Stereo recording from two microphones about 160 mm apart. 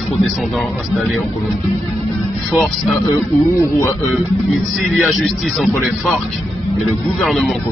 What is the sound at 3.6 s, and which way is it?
Speech, 20° left (ahead or behind).